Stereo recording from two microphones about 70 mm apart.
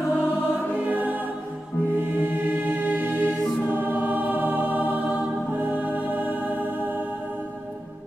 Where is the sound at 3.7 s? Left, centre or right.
Right.